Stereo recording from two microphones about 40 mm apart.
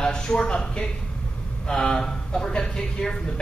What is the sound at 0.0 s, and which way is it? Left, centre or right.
A woman's voice, centre.